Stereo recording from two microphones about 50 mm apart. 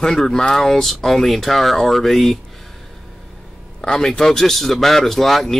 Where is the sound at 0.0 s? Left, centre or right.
Centre.